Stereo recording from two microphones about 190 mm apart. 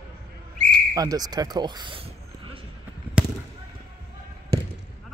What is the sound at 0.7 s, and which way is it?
Speech, 20° right (ahead or behind).